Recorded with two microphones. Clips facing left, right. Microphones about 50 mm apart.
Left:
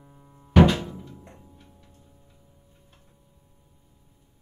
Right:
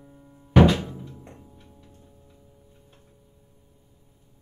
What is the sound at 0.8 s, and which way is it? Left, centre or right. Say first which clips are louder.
Music: even; centre.